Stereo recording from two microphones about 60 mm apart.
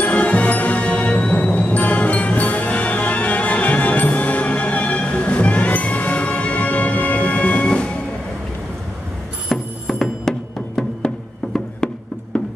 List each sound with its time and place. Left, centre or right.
0.0 s music: left
9.5 s music: centre
11.5 s music: centre